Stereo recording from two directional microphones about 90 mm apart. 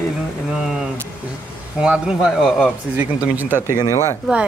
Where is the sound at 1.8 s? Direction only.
10° right (ahead or behind).